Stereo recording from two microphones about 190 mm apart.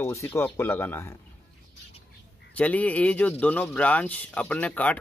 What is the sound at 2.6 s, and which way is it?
Speech, 5° left (ahead or behind).